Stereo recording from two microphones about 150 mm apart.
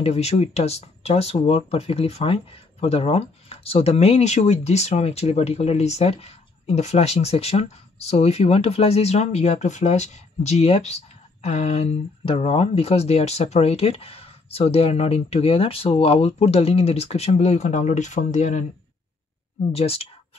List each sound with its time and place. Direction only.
0.0 s speech: 45° left (ahead or behind)
19.7 s speech: 40° left (ahead or behind)